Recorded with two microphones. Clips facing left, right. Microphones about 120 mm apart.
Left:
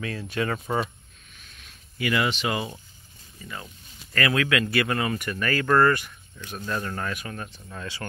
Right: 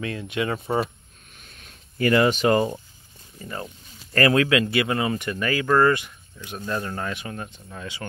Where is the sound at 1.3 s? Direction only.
45° right (ahead or behind).